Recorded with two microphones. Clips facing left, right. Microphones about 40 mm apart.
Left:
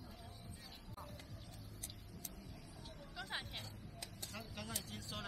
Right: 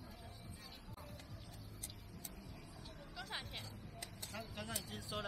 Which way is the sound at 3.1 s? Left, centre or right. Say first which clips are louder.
Left 1 dB; centre.